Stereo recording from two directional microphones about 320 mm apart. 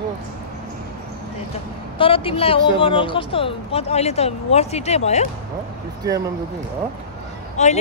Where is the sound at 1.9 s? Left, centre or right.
Centre.